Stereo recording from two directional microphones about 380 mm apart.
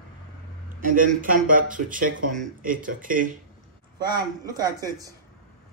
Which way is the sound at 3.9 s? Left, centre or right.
Centre.